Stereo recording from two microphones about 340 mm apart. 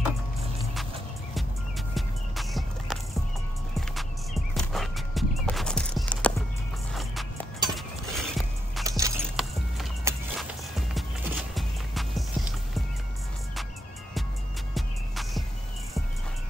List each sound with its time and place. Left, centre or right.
1.3 s music: centre
3.9 s horse: centre
6.9 s music: centre
14.7 s music: centre